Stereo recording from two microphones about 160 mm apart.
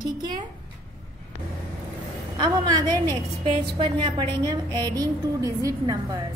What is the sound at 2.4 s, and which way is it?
A woman's voice, 25° right (ahead or behind).